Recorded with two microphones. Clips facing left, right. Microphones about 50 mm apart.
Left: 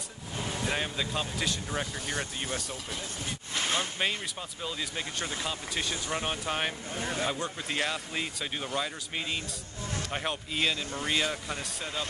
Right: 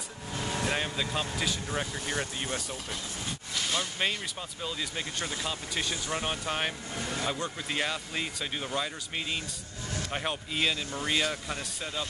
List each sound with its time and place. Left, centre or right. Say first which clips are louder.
0.7 s speech: left 1 dB; centre
3.5 s a sound: left 2 dB; left
4.6 s speech: even; centre